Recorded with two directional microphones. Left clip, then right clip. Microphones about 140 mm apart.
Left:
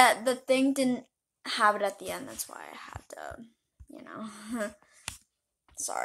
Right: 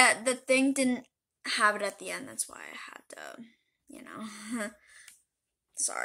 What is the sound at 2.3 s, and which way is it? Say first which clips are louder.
Speech: even; 20° right (ahead or behind).